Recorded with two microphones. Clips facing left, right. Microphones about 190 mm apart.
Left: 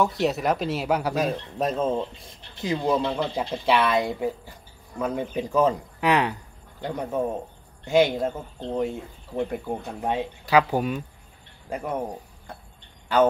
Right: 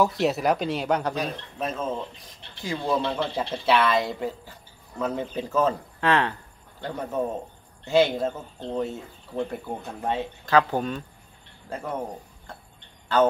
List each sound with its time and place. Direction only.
0.0 s speech: centre (ahead or behind)
1.1 s speech: 45° left (ahead or behind); by 12.0 s 15° left (ahead or behind)